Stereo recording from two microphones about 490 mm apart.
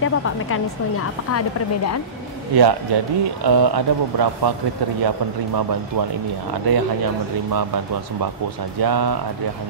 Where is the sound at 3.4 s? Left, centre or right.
Right.